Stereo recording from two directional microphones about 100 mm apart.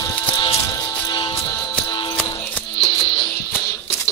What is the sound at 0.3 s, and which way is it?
Music, 55° left (ahead or behind).